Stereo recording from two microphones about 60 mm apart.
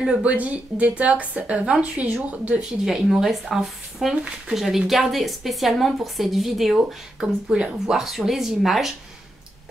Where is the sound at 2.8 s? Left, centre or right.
Centre.